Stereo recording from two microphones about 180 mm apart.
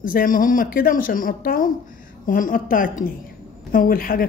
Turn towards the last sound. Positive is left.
turn(degrees=55)  # may be behind; listen again after turning